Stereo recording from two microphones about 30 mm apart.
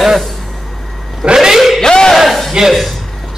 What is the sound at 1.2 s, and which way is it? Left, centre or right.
Speech, right.